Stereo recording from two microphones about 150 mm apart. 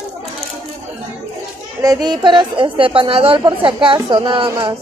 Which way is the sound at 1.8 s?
25° right (ahead or behind).